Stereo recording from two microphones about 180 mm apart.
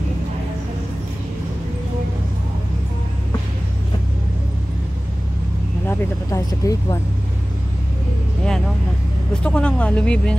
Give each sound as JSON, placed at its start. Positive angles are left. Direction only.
{"t": 5.9, "sound": "speech", "side_deg": 15}
{"t": 9.3, "sound": "speech", "side_deg": 5}